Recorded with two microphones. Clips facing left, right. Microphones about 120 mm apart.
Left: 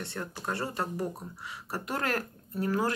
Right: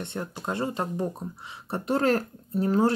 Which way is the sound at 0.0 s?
20° right (ahead or behind).